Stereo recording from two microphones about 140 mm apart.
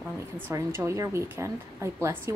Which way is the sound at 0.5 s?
20° right (ahead or behind).